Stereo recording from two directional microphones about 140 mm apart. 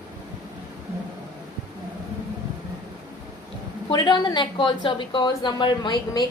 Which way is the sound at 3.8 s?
35° left (ahead or behind).